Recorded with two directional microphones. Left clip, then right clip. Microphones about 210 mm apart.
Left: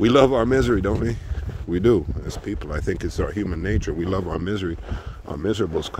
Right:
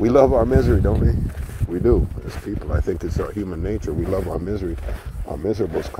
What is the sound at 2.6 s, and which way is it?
Speech, 45° left (ahead or behind).